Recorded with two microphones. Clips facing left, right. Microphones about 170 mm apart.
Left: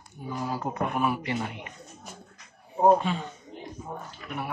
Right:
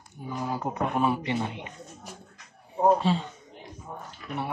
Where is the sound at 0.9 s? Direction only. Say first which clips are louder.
Right 3 dB; 25° right (ahead or behind).